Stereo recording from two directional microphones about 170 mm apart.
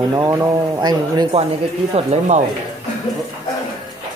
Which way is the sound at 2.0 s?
40° right (ahead or behind).